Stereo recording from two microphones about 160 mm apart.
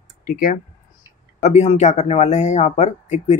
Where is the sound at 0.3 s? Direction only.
60° left (ahead or behind).